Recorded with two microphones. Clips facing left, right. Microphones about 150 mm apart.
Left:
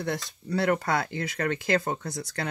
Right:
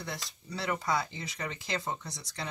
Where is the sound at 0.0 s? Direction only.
55° left (ahead or behind).